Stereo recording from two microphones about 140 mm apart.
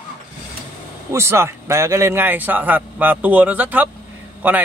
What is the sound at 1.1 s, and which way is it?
Speech, 20° right (ahead or behind).